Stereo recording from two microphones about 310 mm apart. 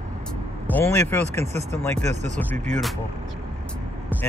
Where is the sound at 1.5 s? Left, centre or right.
Right.